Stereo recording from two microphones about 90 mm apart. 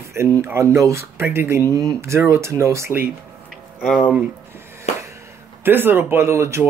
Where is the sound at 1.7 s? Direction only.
40° right (ahead or behind).